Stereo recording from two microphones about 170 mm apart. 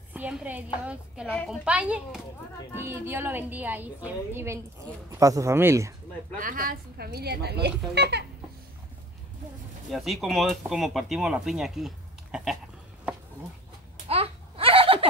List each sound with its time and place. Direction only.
0.1 s a woman's voice: 10° right (ahead or behind)
6.3 s a woman's voice: 55° right (ahead or behind); by 8.3 s 80° right
9.8 s speech: centre (ahead or behind)
14.0 s a sound: 35° right (ahead or behind)